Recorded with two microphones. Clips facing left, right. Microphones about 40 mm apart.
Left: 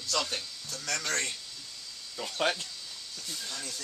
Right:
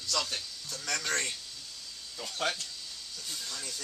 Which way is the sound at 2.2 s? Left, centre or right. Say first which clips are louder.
Left 3 dB; centre.